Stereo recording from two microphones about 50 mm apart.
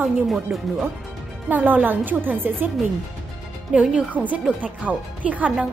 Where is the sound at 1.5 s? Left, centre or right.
Right.